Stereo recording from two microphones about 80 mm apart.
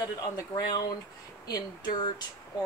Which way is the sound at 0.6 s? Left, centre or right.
Left.